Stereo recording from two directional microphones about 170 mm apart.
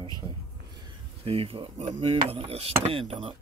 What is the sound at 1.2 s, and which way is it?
Speech, 35° right (ahead or behind).